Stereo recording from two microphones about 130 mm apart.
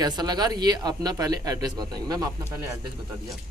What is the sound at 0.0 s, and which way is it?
Speech, 30° right (ahead or behind).